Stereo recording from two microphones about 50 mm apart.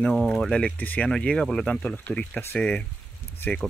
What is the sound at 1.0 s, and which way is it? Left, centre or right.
Speech, centre.